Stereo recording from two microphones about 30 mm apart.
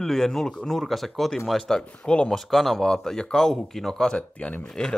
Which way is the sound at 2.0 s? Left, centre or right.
Left.